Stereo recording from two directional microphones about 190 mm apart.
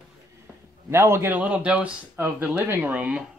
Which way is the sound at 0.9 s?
15° right (ahead or behind).